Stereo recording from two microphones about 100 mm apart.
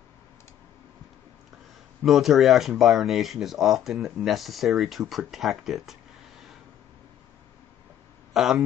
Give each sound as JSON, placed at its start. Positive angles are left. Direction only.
{"t": 2.0, "sound": "speech", "side_deg": 0}
{"t": 8.3, "sound": "speech", "side_deg": -5}